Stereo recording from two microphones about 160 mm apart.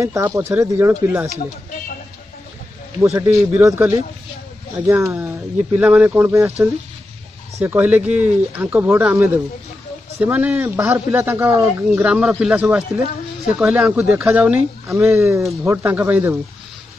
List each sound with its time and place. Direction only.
0.0 s speech: 20° right (ahead or behind)
3.2 s speech: 20° right (ahead or behind)
7.6 s speech: 10° right (ahead or behind)